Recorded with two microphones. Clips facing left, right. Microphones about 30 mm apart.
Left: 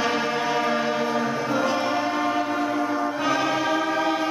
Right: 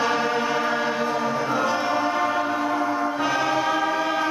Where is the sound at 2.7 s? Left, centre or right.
Centre.